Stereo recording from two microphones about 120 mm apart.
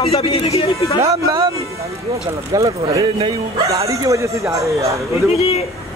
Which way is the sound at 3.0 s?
50° right (ahead or behind).